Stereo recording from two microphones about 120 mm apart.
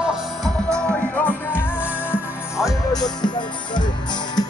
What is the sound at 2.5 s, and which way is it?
Music, 30° left (ahead or behind).